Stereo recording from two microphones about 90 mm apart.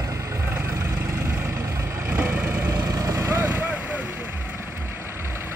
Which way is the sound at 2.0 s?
20° right (ahead or behind).